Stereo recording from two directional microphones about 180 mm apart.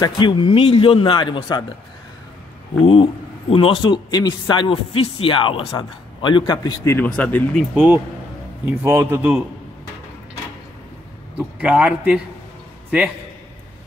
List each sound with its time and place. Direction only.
0.0 s speech: 25° left (ahead or behind)
2.8 s speech: 30° left (ahead or behind); by 7.6 s 10° left (ahead or behind)
7.7 s a man's voice: 10° right (ahead or behind)
11.3 s a man's voice: 5° right (ahead or behind)